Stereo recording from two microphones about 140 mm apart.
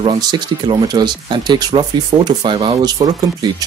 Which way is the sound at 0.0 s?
30° right (ahead or behind).